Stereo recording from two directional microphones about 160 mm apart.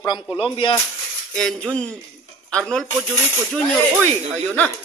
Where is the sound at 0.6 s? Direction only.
30° left (ahead or behind).